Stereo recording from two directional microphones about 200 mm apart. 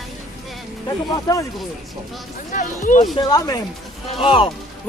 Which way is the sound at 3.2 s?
20° left (ahead or behind).